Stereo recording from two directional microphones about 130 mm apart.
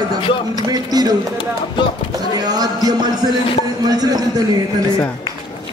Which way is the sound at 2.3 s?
30° right (ahead or behind).